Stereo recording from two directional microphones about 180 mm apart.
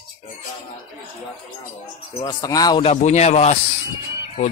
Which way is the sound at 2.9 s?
40° left (ahead or behind).